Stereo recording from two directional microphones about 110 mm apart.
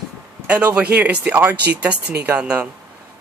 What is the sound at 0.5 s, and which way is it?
Speech, 15° right (ahead or behind).